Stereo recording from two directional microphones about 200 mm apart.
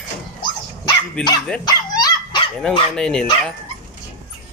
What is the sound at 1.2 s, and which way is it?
Speech, 5° left (ahead or behind).